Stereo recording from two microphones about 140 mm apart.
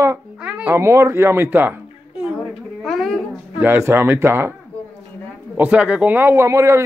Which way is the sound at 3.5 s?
15° right (ahead or behind).